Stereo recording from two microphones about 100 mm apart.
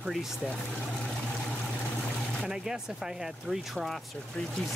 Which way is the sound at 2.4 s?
5° right (ahead or behind).